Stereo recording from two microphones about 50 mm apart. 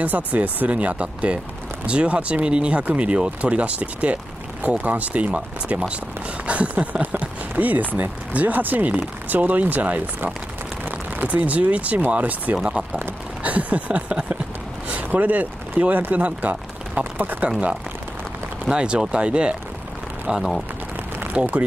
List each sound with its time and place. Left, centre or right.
0.0 s speech: right
12.6 s speech: centre
13.4 s a sound: right
14.9 s speech: right
18.7 s speech: centre
20.2 s speech: centre
21.4 s speech: right